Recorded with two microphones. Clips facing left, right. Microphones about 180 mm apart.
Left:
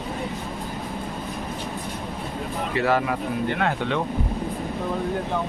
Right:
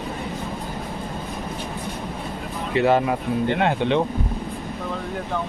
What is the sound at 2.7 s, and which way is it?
Speech, 25° right (ahead or behind).